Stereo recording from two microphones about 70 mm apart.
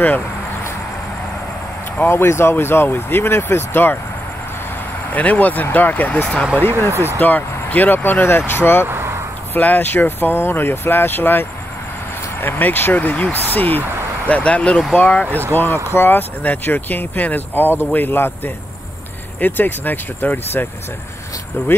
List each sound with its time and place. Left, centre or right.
2.0 s speech: left
5.1 s speech: left
8.8 s vehicle: right
9.6 s speech: left
15.2 s speech: right
15.5 s speech: left